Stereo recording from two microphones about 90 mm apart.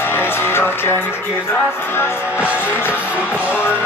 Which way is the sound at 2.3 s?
15° right (ahead or behind).